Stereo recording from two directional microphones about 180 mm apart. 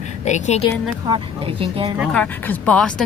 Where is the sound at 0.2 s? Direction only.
40° left (ahead or behind).